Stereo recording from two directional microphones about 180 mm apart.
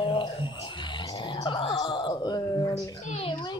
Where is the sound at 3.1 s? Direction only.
30° left (ahead or behind).